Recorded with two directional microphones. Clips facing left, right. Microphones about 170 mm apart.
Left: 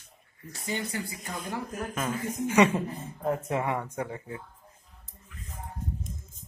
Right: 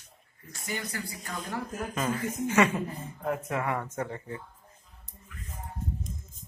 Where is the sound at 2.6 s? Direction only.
25° left (ahead or behind); by 4.4 s 10° left (ahead or behind).